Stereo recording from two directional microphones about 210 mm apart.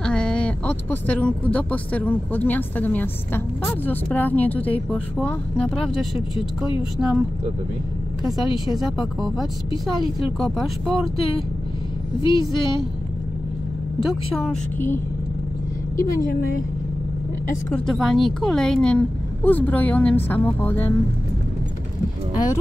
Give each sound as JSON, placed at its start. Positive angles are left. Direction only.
{"t": 0.0, "sound": "a woman's voice", "side_deg": 5}
{"t": 7.0, "sound": "speech", "side_deg": -5}
{"t": 10.4, "sound": "speech", "side_deg": 0}
{"t": 12.2, "sound": "a woman's voice", "side_deg": 25}
{"t": 14.0, "sound": "speech", "side_deg": 0}
{"t": 17.7, "sound": "a woman's voice", "side_deg": 0}